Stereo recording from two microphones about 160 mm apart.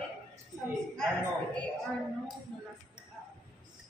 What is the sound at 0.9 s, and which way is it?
Speech, 5° left (ahead or behind).